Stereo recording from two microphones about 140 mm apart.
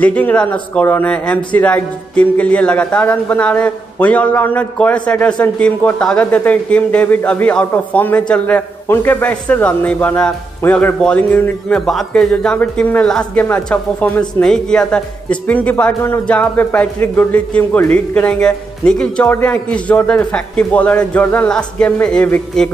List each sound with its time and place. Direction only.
0.0 s speech: 10° left (ahead or behind)